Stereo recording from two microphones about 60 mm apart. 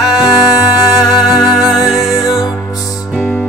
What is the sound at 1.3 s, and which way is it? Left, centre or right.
Music, centre.